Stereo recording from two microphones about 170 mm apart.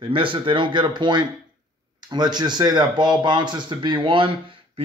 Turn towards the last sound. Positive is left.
turn(degrees=-30)  # may be behind; listen again after turning